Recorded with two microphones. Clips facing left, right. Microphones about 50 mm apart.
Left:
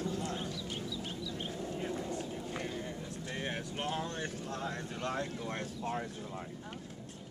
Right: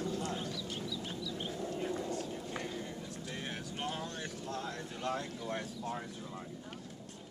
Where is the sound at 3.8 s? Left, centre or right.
Centre.